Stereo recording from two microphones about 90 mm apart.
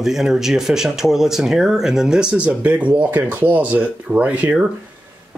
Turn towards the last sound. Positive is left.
turn(degrees=-10)  # may be behind; listen again after turning